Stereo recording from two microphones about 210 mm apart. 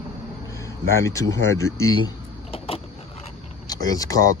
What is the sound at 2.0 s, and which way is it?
Power windows, 25° left (ahead or behind).